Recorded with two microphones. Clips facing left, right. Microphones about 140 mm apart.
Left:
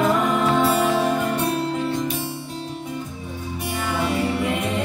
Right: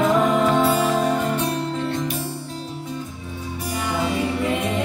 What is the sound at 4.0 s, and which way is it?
Music, 20° right (ahead or behind).